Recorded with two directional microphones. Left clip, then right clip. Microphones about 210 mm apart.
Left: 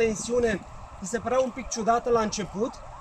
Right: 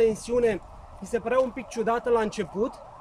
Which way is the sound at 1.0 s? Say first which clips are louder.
Right 1 dB; 25° right (ahead or behind).